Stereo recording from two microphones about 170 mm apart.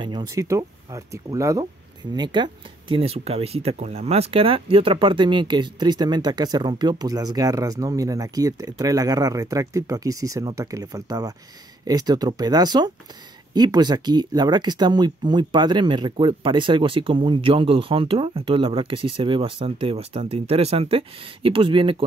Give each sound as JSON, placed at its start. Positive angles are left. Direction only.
{"t": 0.0, "sound": "speech", "side_deg": -25}